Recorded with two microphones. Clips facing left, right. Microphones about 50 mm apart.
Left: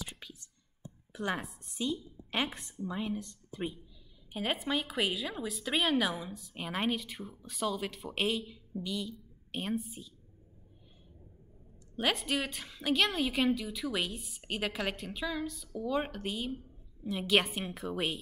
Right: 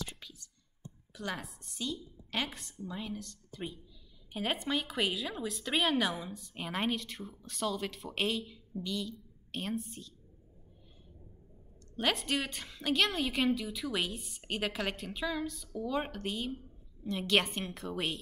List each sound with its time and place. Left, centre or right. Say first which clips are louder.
0.1 s whispering: left 2 dB; centre
0.8 s a sound: left 4 dB; centre
2.6 s speech: left 4 dB; centre
4.3 s a woman's voice: left 1 dB; centre
12.0 s a woman's voice: even; centre